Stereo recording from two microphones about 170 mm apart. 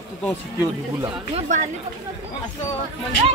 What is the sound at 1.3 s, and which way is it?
Speech, 45° right (ahead or behind).